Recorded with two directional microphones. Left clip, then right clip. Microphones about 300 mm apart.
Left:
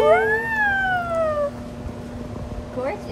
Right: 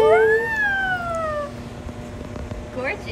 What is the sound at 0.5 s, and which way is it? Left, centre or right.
Emergency vehicle, centre.